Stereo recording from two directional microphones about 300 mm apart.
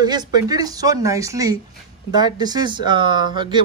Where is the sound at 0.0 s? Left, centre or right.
Centre.